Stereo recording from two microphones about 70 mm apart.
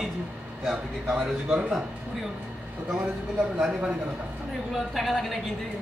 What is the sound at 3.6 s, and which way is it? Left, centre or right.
Speech, centre.